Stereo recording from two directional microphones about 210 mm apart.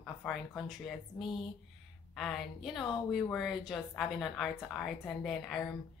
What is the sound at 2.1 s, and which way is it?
A woman's voice, centre (ahead or behind).